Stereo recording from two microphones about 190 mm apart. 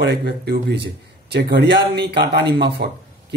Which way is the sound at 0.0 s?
60° right (ahead or behind).